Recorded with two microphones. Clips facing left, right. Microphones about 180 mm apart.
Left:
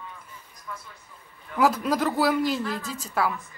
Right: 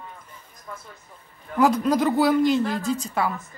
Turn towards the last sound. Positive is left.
turn(degrees=0)  # may be behind; listen again after turning